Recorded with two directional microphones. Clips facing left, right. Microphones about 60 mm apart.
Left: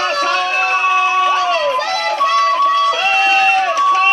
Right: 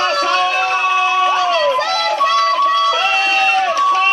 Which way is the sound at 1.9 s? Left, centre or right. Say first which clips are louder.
Even; left.